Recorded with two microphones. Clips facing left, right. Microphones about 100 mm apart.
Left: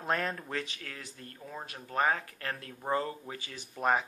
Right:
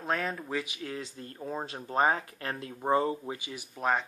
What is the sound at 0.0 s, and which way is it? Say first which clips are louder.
Speech: right 1 dB; centre (ahead or behind).